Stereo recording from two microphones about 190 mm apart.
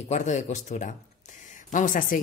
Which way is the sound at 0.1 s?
40° left (ahead or behind).